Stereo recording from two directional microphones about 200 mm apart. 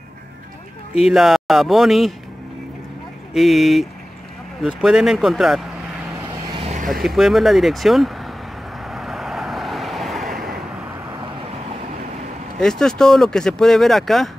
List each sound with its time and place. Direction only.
1.0 s speech: centre (ahead or behind)
3.3 s speech: centre (ahead or behind)
6.2 s vehicle: 25° right (ahead or behind)
6.9 s speech: centre (ahead or behind)
8.8 s vehicle: centre (ahead or behind)
12.5 s speech: 5° left (ahead or behind)